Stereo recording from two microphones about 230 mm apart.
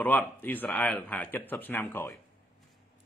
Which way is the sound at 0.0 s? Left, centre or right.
Centre.